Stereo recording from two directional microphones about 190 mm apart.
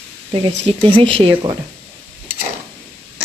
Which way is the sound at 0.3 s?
30° right (ahead or behind).